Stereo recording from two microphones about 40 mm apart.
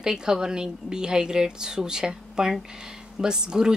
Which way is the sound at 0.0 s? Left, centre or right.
Centre.